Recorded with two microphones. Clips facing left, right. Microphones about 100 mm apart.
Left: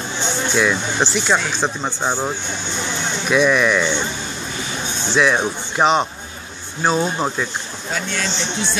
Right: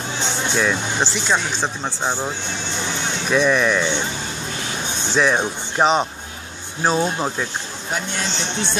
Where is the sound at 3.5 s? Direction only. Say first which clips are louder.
Left 1 dB; 10° right (ahead or behind).